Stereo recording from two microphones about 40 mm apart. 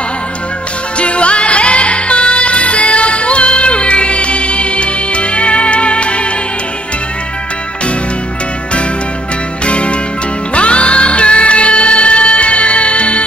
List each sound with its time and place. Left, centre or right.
0.9 s music: left
9.7 s music: left